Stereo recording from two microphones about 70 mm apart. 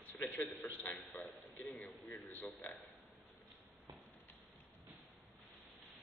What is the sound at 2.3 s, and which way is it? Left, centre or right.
Speech, left.